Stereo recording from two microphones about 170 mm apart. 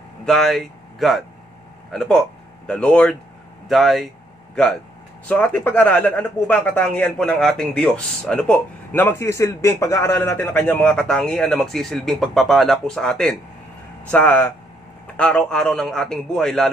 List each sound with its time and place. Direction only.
0.2 s a man's voice: centre (ahead or behind)
5.3 s a man's voice: 10° left (ahead or behind)